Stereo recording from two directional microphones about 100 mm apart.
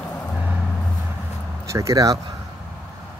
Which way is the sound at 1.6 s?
30° right (ahead or behind).